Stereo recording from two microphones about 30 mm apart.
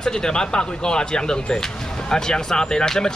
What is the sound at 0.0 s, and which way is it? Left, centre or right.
Speech, left.